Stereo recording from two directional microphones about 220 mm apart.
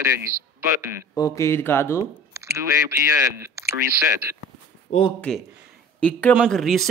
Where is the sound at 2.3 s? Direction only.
15° right (ahead or behind).